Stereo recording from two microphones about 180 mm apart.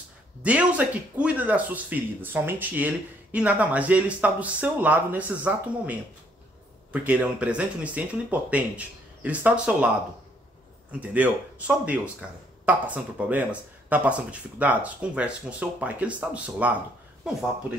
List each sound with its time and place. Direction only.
0.4 s speech: 5° right (ahead or behind)
10.9 s speech: 10° right (ahead or behind)